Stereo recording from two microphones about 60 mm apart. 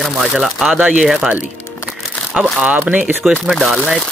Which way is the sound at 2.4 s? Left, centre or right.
Right.